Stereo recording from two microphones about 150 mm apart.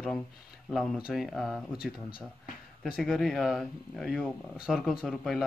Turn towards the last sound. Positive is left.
turn(degrees=0)  # may be behind; listen again after turning